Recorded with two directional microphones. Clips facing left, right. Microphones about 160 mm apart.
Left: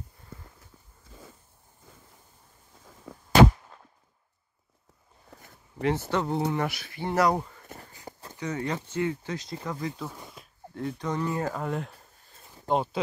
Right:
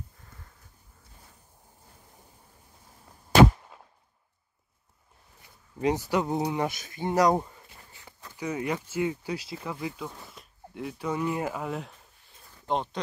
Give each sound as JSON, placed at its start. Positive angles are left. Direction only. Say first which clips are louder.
{"t": 3.1, "sound": "gunshot", "louder": "left 14 dB", "side_deg": 90}
{"t": 3.7, "sound": "a sound", "louder": "right 1 dB", "side_deg": -10}
{"t": 5.8, "sound": "speech", "louder": "right 1 dB", "side_deg": -15}
{"t": 7.6, "sound": "a sound", "louder": "left 9 dB", "side_deg": 45}
{"t": 8.4, "sound": "speech", "louder": "right 1 dB", "side_deg": -10}
{"t": 10.0, "sound": "speech", "louder": "even", "side_deg": 15}
{"t": 10.3, "sound": "speech", "louder": "left 1 dB", "side_deg": 0}